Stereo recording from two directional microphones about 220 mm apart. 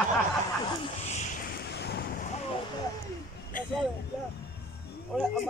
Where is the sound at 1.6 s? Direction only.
50° left (ahead or behind).